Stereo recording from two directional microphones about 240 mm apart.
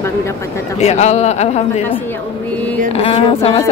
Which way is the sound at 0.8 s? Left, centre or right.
Left.